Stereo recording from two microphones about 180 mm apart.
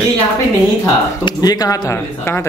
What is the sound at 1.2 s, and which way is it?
Speech, 20° left (ahead or behind).